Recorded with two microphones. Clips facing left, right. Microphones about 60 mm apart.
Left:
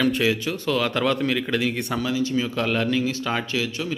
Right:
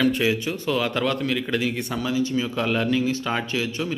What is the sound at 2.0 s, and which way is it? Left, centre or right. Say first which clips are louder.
A man's voice: right 1 dB; centre.